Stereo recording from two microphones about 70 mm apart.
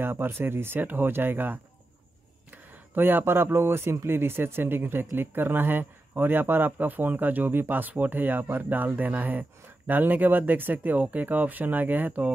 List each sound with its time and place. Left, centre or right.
0.0 s speech: right